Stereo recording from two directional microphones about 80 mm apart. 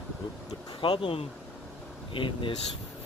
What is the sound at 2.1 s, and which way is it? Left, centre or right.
Speech, left.